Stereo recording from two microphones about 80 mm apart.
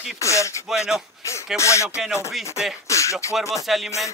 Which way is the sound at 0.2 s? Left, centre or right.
Left.